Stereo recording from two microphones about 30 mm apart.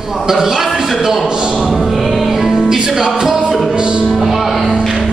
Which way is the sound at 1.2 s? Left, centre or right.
Right.